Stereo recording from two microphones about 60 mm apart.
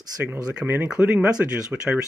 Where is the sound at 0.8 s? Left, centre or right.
Centre.